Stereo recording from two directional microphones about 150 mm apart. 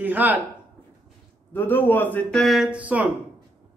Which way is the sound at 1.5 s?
15° left (ahead or behind).